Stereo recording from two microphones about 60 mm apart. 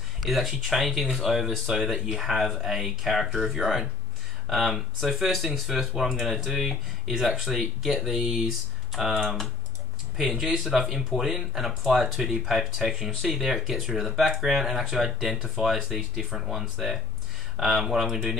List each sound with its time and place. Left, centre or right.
0.2 s speech: centre